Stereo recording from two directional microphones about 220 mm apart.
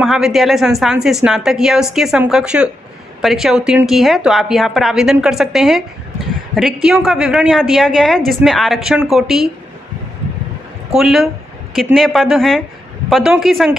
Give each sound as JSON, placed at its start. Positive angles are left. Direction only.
{"t": 0.0, "sound": "a woman's voice", "side_deg": 0}
{"t": 11.0, "sound": "a woman's voice", "side_deg": 0}